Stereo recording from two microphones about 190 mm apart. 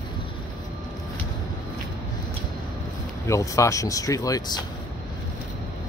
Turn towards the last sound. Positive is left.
turn(degrees=20)  # may be behind; listen again after turning